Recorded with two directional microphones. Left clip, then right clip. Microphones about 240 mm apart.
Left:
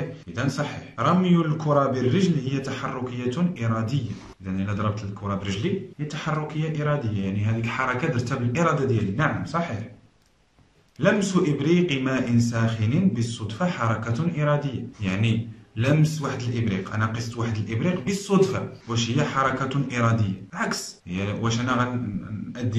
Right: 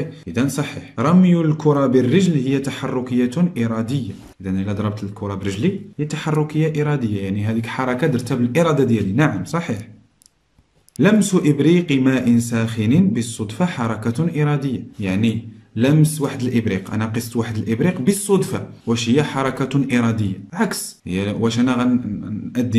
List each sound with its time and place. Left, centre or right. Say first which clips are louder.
0.9 s speech: right 4 dB; right
11.0 s speech: right 5 dB; right